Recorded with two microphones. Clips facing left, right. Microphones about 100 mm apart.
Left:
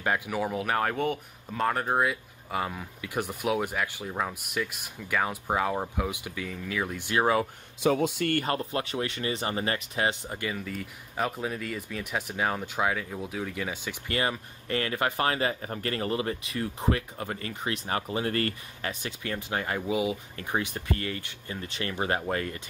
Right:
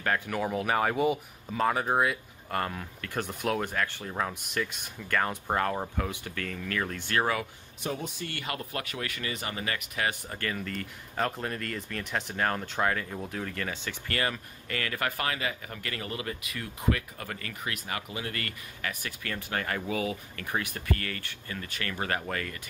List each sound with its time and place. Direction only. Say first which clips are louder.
0.0 s speech: left 1 dB; 15° left (ahead or behind)
0.3 s speech: even; centre (ahead or behind)
7.8 s speech: left 10 dB; 90° left
8.3 s speech: left 9 dB; 45° left (ahead or behind)
8.5 s speech: left 5 dB; 25° left (ahead or behind)
10.5 s speech: even; 5° left (ahead or behind); by 22.6 s 25° left (ahead or behind)